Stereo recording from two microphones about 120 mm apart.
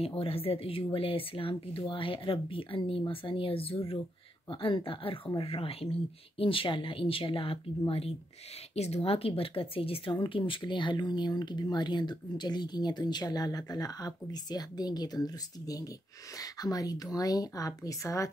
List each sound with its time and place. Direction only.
0.0 s speech: 50° left (ahead or behind)
8.7 s speech: 60° left (ahead or behind); by 18.3 s 25° left (ahead or behind)